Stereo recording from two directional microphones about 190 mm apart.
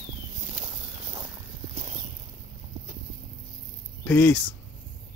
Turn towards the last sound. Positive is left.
turn(degrees=10)  # may be behind; listen again after turning